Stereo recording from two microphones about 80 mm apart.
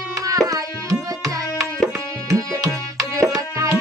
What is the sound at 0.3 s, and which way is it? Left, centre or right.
Tabla, right.